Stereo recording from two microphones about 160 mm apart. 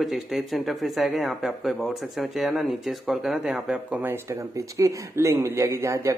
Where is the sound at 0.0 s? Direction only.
Centre (ahead or behind).